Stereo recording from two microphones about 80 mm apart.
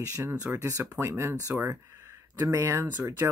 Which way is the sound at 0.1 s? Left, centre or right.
Right.